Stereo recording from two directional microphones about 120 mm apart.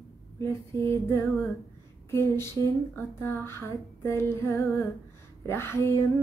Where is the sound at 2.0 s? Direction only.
20° left (ahead or behind).